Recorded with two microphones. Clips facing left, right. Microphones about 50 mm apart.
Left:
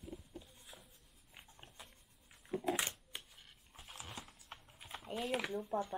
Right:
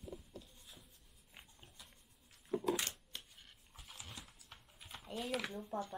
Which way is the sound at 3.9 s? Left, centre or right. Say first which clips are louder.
Left 4 dB; left.